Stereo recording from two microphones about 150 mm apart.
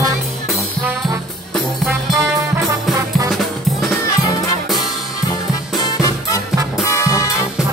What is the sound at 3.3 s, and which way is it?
Music, centre (ahead or behind).